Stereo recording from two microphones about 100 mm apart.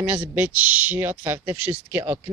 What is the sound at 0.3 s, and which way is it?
Speech, 20° right (ahead or behind).